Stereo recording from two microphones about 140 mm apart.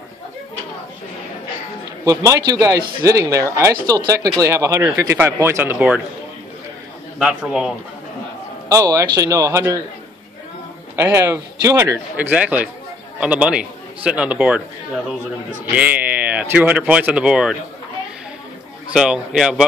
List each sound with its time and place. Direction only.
2.0 s speech: 25° right (ahead or behind)
7.2 s speech: 10° right (ahead or behind)
8.6 s speech: 20° right (ahead or behind)
11.0 s speech: 20° right (ahead or behind)
15.7 s speech: 10° right (ahead or behind)
18.9 s a man's voice: 5° right (ahead or behind)